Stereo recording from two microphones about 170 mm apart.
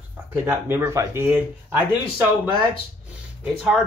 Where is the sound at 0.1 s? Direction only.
10° right (ahead or behind).